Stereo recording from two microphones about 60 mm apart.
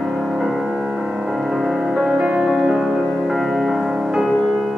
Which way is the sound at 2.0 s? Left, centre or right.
Centre.